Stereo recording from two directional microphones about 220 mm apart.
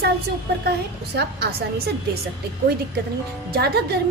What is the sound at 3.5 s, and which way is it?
Speech, 45° right (ahead or behind).